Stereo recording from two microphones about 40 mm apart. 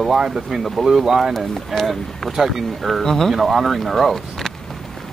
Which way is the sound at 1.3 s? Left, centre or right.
Centre.